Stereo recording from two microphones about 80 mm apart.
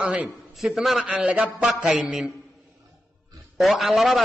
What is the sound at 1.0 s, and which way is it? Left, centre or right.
A man's voice, centre.